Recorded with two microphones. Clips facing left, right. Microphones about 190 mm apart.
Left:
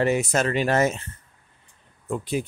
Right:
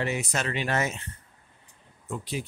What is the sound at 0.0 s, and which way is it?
Speech, 45° left (ahead or behind).